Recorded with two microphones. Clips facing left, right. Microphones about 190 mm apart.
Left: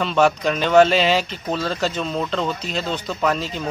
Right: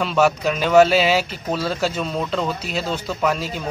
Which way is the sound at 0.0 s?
5° right (ahead or behind).